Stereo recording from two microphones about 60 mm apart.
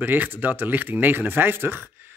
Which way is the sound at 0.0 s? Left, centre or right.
Right.